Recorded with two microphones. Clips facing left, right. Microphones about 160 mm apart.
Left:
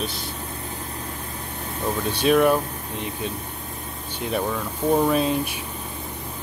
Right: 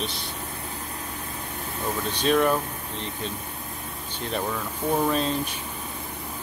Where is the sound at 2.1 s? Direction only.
10° left (ahead or behind).